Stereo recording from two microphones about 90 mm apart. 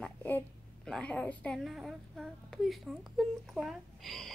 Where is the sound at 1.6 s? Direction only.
Centre (ahead or behind).